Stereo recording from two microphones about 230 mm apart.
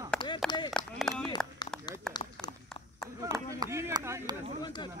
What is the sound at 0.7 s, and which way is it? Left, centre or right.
Run, centre.